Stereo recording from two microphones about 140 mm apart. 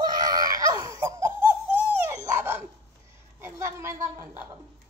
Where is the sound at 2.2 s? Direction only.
15° right (ahead or behind).